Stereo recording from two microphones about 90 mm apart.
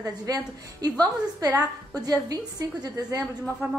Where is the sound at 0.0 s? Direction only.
40° right (ahead or behind).